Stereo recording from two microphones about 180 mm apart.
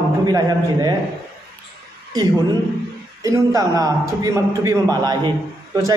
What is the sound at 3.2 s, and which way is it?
A man's voice, 20° right (ahead or behind).